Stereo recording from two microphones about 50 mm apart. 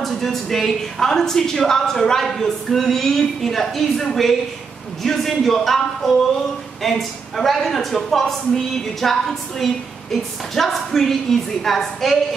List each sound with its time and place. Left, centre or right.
0.0 s speech: centre